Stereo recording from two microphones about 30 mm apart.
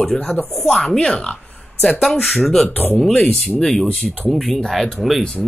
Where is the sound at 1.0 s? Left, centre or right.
Left.